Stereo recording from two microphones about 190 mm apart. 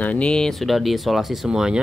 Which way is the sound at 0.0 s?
5° left (ahead or behind).